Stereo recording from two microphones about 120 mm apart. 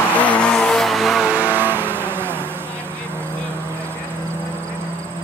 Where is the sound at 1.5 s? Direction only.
15° right (ahead or behind).